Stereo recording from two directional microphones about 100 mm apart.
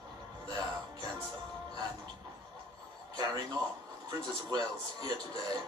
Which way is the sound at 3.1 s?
45° right (ahead or behind).